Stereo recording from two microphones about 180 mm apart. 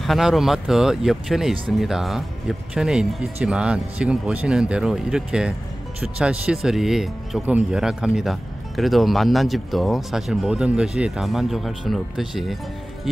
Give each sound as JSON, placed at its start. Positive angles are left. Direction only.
{"t": 0.0, "sound": "speech", "side_deg": 0}